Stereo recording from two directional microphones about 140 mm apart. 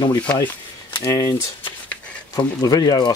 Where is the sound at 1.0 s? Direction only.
25° left (ahead or behind).